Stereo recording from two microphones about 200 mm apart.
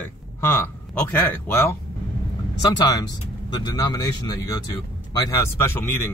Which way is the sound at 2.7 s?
20° left (ahead or behind).